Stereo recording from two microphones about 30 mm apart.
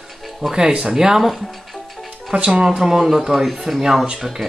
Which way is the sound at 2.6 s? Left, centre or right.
Centre.